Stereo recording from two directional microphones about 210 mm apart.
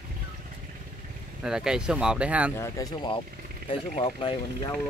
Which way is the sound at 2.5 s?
15° left (ahead or behind).